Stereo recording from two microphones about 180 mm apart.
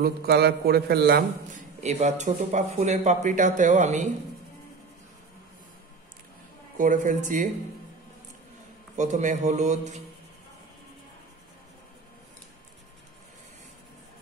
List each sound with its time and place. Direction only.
0.0 s a man's voice: 60° right (ahead or behind)
1.8 s speech: 40° right (ahead or behind)
6.8 s a man's voice: 45° right (ahead or behind)
8.9 s a man's voice: 45° right (ahead or behind)